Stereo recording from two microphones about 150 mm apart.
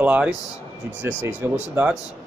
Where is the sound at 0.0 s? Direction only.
10° right (ahead or behind).